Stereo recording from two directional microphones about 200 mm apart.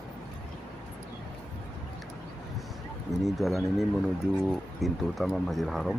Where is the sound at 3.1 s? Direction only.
Centre (ahead or behind).